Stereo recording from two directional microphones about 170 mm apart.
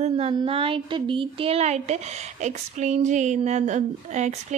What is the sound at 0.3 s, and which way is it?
A woman's voice, 30° right (ahead or behind).